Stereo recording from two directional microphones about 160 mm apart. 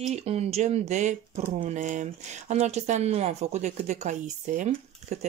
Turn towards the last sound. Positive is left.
turn(degrees=-50)  # may be behind; listen again after turning